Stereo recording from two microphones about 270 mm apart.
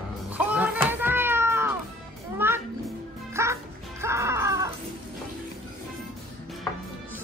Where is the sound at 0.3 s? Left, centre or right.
Centre.